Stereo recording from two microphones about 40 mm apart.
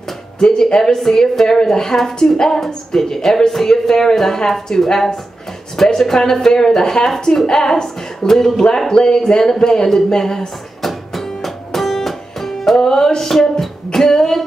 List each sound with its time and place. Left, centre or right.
0.4 s a woman's voice: centre
10.9 s music: centre
13.9 s a woman's voice: centre